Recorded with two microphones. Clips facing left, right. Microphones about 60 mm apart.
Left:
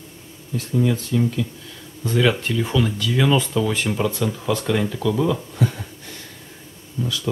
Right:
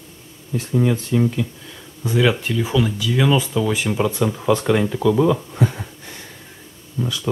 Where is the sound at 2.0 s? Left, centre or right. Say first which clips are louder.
Right 1 dB; centre.